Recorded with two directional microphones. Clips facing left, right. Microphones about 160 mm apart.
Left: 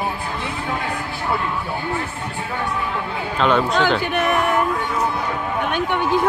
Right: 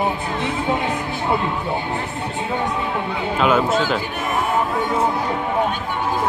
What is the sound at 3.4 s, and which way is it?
Speech, 5° right (ahead or behind).